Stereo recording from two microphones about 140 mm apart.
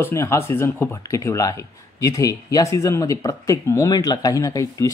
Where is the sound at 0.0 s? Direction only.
20° left (ahead or behind).